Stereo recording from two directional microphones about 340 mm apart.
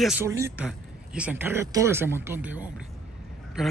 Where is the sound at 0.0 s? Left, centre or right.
Centre.